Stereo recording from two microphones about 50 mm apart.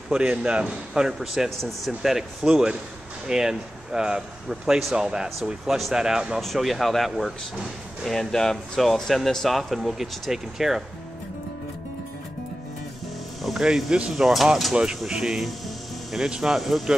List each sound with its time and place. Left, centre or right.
0.1 s speech: centre
6.4 s speech: centre
13.4 s speech: centre
14.1 s speech: centre
15.0 s music: centre
16.3 s speech: centre
16.5 s speech: centre